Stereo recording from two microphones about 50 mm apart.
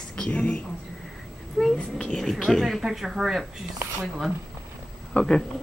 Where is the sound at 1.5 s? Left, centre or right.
Centre.